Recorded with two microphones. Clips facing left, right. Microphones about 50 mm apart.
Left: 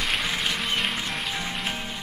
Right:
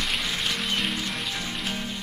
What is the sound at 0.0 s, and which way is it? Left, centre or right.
Music, centre.